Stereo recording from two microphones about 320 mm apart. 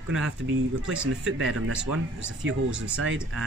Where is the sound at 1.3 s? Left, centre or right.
Right.